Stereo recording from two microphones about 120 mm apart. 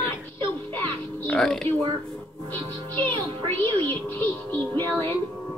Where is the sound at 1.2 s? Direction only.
10° left (ahead or behind).